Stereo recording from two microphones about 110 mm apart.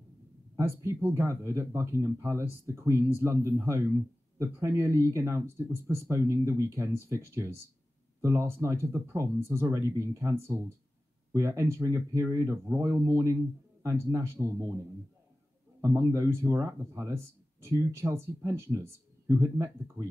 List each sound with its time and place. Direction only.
0.6 s speech: 25° right (ahead or behind)
15.8 s speech: 25° right (ahead or behind)